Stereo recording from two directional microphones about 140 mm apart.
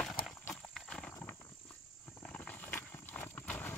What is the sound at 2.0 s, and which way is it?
Horse, 10° left (ahead or behind).